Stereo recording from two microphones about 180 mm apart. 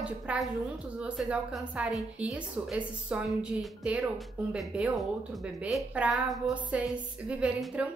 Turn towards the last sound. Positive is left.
turn(degrees=-5)  # may be behind; listen again after turning